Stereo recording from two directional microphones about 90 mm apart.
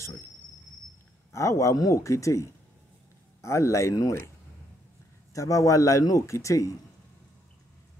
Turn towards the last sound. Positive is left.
turn(degrees=35)  # may be behind; listen again after turning